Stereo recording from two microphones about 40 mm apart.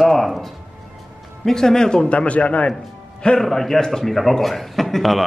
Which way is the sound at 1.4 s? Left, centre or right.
Centre.